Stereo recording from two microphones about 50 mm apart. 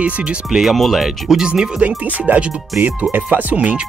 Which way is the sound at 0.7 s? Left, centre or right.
Centre.